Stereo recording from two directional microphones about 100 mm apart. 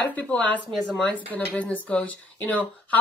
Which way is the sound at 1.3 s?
15° left (ahead or behind).